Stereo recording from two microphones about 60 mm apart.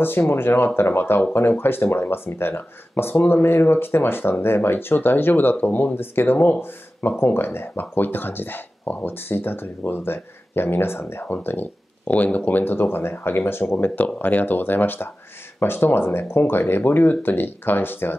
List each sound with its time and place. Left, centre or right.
0.0 s speech: left